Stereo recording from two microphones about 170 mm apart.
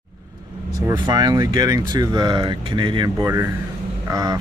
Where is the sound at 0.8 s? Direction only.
25° right (ahead or behind).